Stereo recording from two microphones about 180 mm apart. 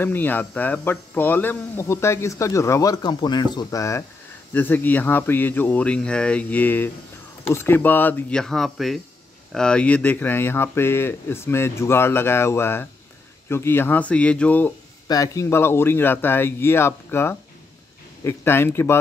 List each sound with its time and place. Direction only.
0.0 s speech: 10° left (ahead or behind)
15.0 s speech: 20° left (ahead or behind)